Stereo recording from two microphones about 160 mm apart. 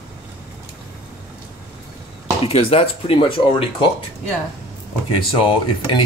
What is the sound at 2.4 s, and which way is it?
Speech, 35° left (ahead or behind).